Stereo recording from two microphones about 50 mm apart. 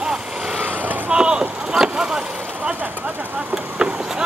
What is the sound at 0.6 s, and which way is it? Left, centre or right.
Vehicle, right.